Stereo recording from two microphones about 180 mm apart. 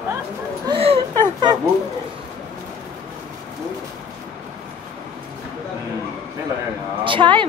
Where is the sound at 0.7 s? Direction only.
30° right (ahead or behind).